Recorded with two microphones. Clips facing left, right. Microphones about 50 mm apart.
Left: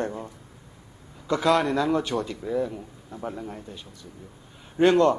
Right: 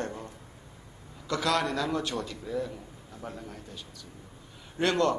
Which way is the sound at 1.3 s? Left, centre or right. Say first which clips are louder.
Left 6 dB; left.